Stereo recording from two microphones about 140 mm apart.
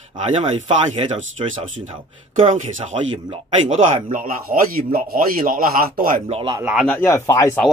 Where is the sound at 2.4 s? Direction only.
60° right (ahead or behind).